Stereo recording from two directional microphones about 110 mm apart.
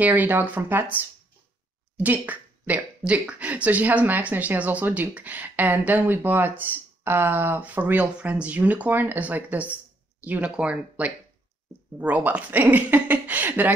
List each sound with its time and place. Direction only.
0.0 s speech: 15° right (ahead or behind)
2.0 s speech: 15° right (ahead or behind)